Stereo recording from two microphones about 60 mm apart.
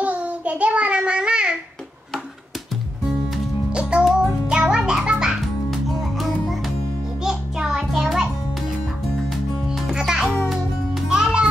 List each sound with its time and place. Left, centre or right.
0.0 s child singing: right
3.7 s music: centre
9.9 s music: centre